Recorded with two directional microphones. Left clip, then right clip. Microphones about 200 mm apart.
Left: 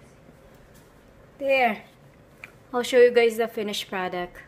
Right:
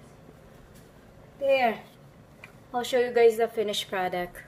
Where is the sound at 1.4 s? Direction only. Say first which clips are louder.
Left 2 dB; 60° left (ahead or behind).